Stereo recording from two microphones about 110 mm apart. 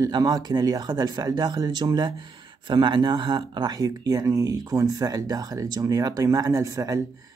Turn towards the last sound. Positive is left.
turn(degrees=-30)  # may be behind; listen again after turning